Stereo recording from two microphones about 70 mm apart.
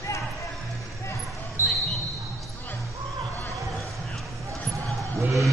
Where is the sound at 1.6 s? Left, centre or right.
Right.